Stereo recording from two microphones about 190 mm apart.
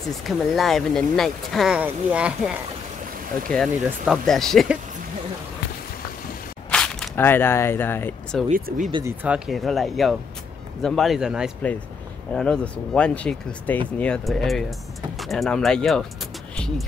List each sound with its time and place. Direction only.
0.6 s speech: centre (ahead or behind)
6.7 s speech: 5° left (ahead or behind)
8.5 s speech: 45° right (ahead or behind)
9.0 s speech: 10° right (ahead or behind)